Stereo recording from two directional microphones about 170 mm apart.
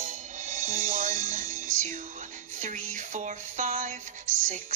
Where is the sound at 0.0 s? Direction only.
45° right (ahead or behind).